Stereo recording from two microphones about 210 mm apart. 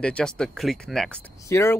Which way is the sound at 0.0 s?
5° left (ahead or behind).